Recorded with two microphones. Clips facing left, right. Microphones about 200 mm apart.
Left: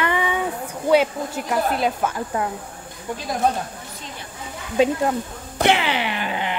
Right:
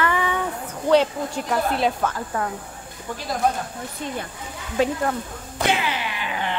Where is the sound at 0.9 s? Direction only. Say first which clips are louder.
Even; 5° left (ahead or behind).